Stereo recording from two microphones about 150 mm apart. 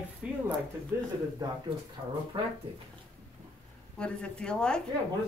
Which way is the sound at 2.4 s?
35° right (ahead or behind).